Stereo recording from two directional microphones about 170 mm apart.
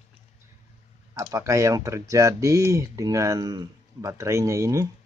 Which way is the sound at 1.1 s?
20° right (ahead or behind).